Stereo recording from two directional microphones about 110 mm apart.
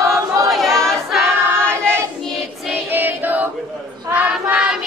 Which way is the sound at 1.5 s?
20° right (ahead or behind).